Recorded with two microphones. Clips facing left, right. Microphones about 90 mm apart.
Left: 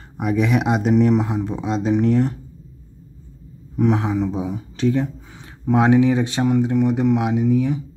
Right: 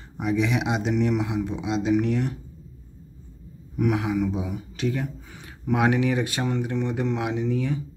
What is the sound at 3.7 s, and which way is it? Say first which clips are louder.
Speech: left 4 dB; 30° left (ahead or behind).